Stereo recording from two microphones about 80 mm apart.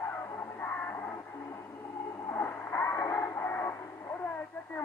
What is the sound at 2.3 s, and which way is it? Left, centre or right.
Radio, left.